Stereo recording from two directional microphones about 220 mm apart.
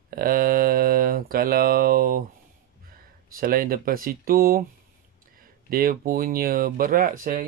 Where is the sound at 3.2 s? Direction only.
40° right (ahead or behind).